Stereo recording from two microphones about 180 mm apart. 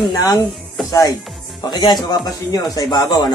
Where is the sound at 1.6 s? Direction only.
25° left (ahead or behind).